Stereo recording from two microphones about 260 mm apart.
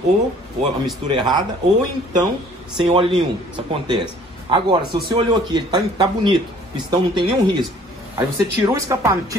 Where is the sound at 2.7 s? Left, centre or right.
Centre.